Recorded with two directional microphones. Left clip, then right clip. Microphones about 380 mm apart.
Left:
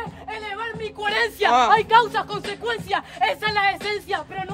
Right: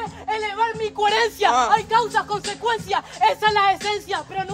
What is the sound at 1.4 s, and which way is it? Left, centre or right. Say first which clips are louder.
Speech: left 2 dB; left.